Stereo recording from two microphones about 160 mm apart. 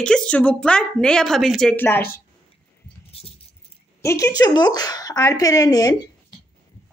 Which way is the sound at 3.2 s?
40° left (ahead or behind).